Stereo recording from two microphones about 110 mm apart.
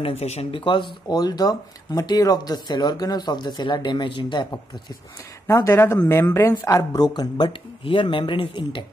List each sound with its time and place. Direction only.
0.0 s speech: 75° left (ahead or behind); by 4.6 s 45° left (ahead or behind)
5.5 s speech: 25° left (ahead or behind); by 8.8 s 50° left (ahead or behind)